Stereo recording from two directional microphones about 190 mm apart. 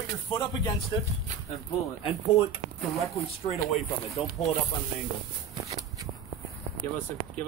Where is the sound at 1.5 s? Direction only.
Centre (ahead or behind).